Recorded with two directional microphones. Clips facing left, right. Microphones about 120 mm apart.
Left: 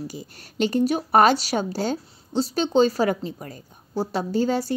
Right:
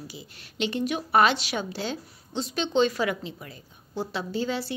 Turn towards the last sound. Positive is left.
turn(degrees=45)  # may be behind; listen again after turning